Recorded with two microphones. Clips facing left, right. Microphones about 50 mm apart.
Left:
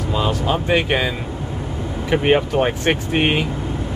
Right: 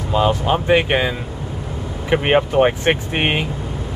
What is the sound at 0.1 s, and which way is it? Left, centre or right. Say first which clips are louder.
Speech: right 4 dB; right.